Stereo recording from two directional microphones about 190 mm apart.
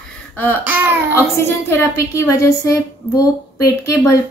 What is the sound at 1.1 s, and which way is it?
Speech, 15° left (ahead or behind).